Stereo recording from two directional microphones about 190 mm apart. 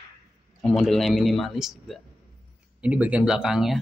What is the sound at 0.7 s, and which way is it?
Speech, centre (ahead or behind).